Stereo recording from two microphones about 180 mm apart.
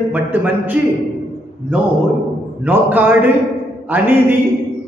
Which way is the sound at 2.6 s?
10° right (ahead or behind).